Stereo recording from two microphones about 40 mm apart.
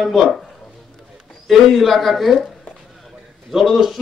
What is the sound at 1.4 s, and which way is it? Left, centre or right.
Speech, centre.